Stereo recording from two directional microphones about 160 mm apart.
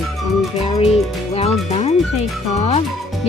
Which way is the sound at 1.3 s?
40° left (ahead or behind).